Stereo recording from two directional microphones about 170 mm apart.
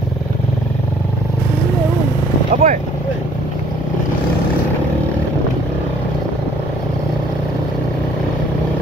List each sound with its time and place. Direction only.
2.5 s vehicle: 50° right (ahead or behind)